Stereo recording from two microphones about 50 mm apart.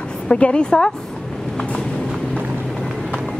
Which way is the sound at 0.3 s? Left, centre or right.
Left.